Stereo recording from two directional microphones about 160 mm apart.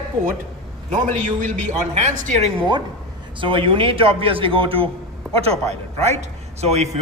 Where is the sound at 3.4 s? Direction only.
35° right (ahead or behind).